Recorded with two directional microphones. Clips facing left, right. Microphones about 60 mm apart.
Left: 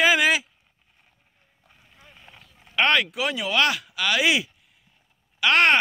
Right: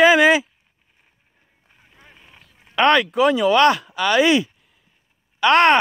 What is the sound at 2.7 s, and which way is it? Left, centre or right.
Speech, right.